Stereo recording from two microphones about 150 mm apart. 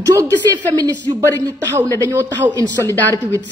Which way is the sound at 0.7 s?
30° right (ahead or behind).